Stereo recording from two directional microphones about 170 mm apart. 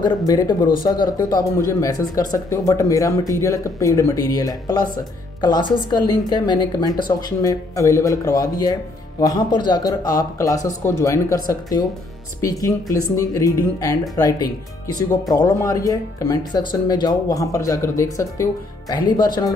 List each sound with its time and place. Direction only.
0.3 s speech: 25° left (ahead or behind)